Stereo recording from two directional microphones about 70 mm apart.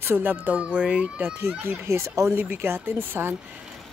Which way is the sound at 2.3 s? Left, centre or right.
Right.